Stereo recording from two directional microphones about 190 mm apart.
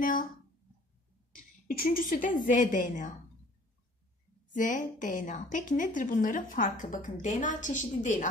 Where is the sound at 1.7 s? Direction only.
50° left (ahead or behind).